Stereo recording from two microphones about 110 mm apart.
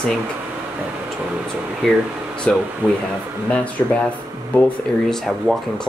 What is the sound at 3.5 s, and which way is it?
Speech, 15° left (ahead or behind).